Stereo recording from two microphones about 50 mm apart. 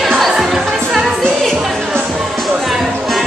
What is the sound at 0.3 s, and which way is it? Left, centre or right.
Music, centre.